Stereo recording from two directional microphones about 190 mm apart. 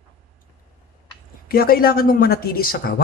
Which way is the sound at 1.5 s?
50° left (ahead or behind).